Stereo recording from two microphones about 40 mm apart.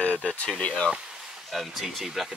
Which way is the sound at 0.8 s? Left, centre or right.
Centre.